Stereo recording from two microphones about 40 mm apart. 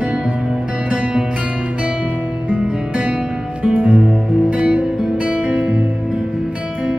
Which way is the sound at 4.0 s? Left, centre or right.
Centre.